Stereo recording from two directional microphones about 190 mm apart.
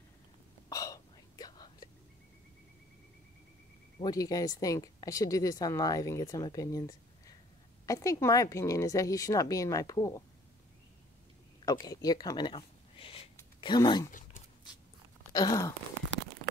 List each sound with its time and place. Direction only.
0.7 s whispering: 15° left (ahead or behind)
4.0 s speech: 20° left (ahead or behind)
7.8 s speech: 15° left (ahead or behind)
11.6 s speech: 20° left (ahead or behind)
15.3 s speech: 20° left (ahead or behind)